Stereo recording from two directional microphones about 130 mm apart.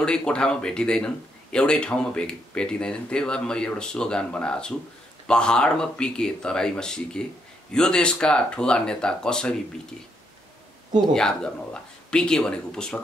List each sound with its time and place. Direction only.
0.0 s speech: 5° left (ahead or behind)
11.1 s speech: 5° left (ahead or behind)